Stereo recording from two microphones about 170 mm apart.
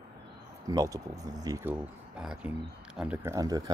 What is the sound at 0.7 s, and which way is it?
Speech, 20° right (ahead or behind).